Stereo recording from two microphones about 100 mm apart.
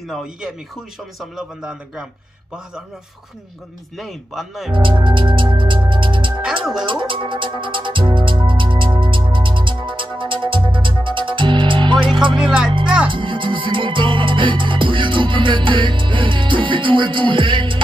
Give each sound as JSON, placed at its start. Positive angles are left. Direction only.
{"t": 0.1, "sound": "a man's voice", "side_deg": -5}
{"t": 4.0, "sound": "a man's voice", "side_deg": 0}
{"t": 4.7, "sound": "music", "side_deg": -55}
{"t": 6.6, "sound": "a man's voice", "side_deg": -5}
{"t": 6.9, "sound": "music", "side_deg": -55}
{"t": 12.4, "sound": "speech", "side_deg": -5}
{"t": 13.1, "sound": "music", "side_deg": -55}